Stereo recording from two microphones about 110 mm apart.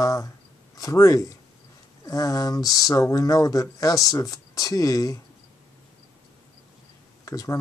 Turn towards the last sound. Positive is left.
turn(degrees=30)  # may be behind; listen again after turning